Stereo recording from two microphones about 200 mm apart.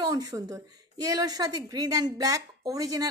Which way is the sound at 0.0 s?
20° right (ahead or behind).